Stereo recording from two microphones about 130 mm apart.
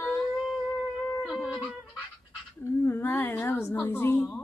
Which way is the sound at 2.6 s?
20° left (ahead or behind).